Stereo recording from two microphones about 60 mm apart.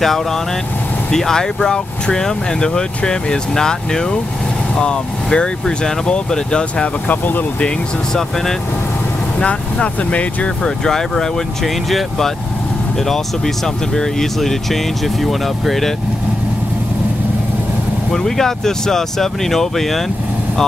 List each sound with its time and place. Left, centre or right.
1.1 s speech: centre
7.1 s speech: left
9.4 s speech: centre
10.9 s speech: centre
13.9 s speech: centre
18.1 s speech: centre